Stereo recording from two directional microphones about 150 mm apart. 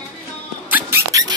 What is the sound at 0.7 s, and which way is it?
Mouse, 20° right (ahead or behind).